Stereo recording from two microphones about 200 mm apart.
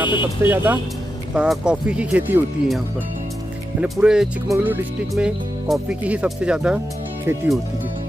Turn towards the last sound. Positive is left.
turn(degrees=-10)  # may be behind; listen again after turning